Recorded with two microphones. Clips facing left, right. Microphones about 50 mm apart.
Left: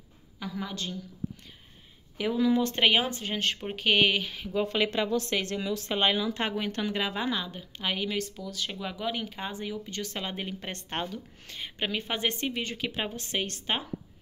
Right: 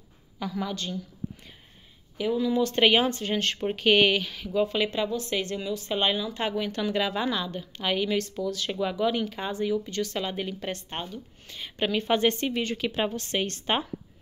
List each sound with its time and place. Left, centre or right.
0.4 s a woman's voice: centre
2.7 s a woman's voice: centre
4.2 s speech: centre
4.6 s speech: left
5.9 s speech: left
6.9 s a woman's voice: left
10.9 s speech: left
11.8 s a woman's voice: centre
13.1 s a woman's voice: centre
13.4 s speech: centre